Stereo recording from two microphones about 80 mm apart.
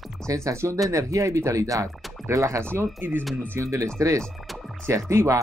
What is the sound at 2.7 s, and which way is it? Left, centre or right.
Speech, right.